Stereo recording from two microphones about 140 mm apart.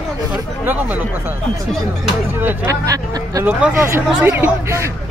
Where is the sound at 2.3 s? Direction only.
15° right (ahead or behind).